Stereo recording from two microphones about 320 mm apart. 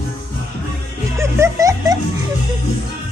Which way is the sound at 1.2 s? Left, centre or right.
Centre.